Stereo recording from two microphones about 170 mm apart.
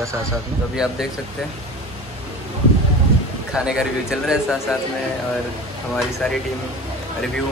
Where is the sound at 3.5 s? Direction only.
5° right (ahead or behind).